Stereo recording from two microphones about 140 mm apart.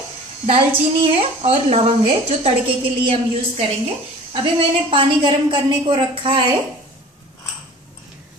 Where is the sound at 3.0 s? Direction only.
45° right (ahead or behind).